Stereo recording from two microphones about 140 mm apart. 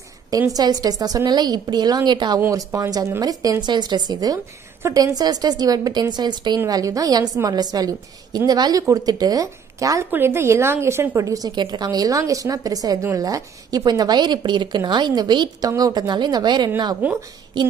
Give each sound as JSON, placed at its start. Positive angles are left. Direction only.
{"t": 0.3, "sound": "a woman's voice", "side_deg": -25}